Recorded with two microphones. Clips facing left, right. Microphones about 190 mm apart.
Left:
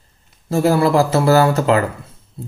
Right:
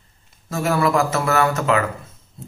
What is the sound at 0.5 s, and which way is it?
Speech, 30° left (ahead or behind).